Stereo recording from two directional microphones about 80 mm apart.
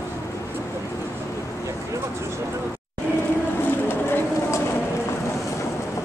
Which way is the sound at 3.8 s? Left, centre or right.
Left.